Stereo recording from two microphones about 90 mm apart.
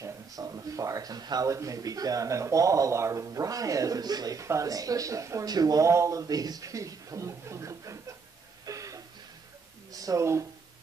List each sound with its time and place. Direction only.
0.0 s a man's voice: 40° right (ahead or behind)
5.9 s a man's voice: 35° right (ahead or behind)
8.6 s a sound: 40° right (ahead or behind)
9.9 s speech: 40° right (ahead or behind)